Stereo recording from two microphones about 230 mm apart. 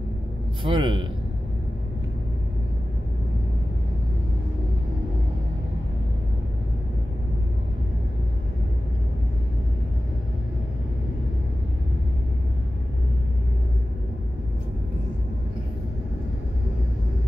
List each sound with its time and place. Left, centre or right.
0.7 s a man's voice: right